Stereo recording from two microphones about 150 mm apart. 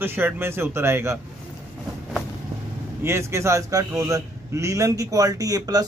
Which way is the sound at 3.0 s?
15° right (ahead or behind).